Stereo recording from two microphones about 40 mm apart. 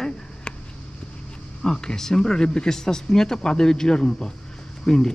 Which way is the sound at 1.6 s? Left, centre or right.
Centre.